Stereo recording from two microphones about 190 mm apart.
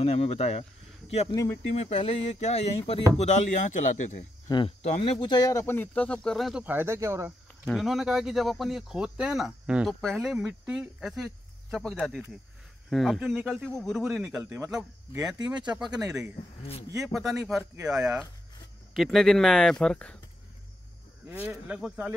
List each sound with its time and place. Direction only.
0.0 s speech: 35° left (ahead or behind)
1.3 s speech: 15° left (ahead or behind)
1.7 s speech: 35° left (ahead or behind)
4.5 s speech: 30° left (ahead or behind); by 6.6 s centre (ahead or behind)
6.6 s speech: 10° right (ahead or behind)
7.6 s speech: centre (ahead or behind)
15.3 s speech: 20° right (ahead or behind)
16.1 s speech: 5° right (ahead or behind)
21.3 s speech: 10° right (ahead or behind)